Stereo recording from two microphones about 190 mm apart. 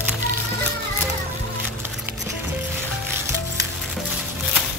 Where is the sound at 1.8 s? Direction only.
10° right (ahead or behind).